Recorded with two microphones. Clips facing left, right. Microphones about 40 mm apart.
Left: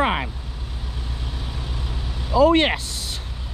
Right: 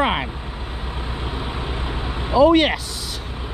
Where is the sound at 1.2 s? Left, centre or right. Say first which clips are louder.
Right 7 dB; right.